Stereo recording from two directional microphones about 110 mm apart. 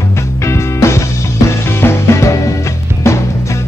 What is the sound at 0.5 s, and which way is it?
Music, 25° left (ahead or behind).